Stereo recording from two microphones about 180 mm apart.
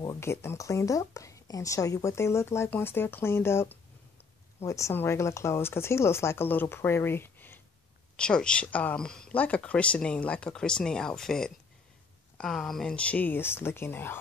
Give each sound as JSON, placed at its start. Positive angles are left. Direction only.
{"t": 0.0, "sound": "a woman's voice", "side_deg": 15}